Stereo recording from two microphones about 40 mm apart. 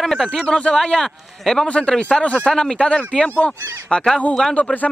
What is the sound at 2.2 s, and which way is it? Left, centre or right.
Speech, left.